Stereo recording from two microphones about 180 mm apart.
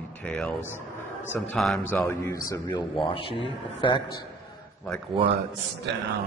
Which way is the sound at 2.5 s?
20° left (ahead or behind).